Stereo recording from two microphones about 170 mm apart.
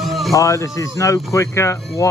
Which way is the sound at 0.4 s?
20° left (ahead or behind).